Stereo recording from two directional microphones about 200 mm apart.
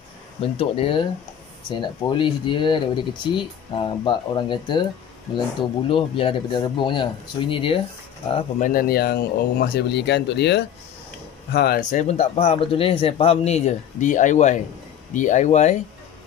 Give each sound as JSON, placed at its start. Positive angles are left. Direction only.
{"t": 0.4, "sound": "speech", "side_deg": 25}
{"t": 5.9, "sound": "speech", "side_deg": 25}
{"t": 8.6, "sound": "speech", "side_deg": 45}